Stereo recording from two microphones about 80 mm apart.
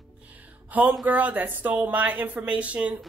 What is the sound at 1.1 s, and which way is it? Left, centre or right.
A woman's voice, centre.